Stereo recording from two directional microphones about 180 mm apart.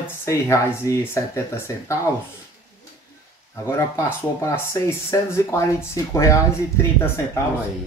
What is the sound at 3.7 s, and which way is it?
Speech, 15° left (ahead or behind).